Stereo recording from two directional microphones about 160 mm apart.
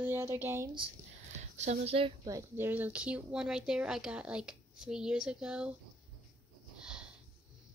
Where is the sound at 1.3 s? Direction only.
45° right (ahead or behind).